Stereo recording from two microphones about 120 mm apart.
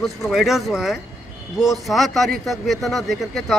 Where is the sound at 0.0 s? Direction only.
Centre (ahead or behind).